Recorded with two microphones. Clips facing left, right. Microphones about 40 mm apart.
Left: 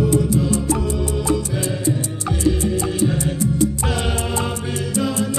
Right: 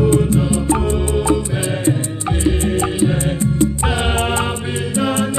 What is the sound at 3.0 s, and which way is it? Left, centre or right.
Music, right.